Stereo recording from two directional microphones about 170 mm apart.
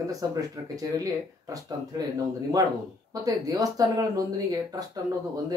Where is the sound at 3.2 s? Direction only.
20° right (ahead or behind).